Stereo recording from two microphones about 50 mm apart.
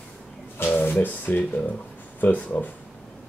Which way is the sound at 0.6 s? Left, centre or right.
Left.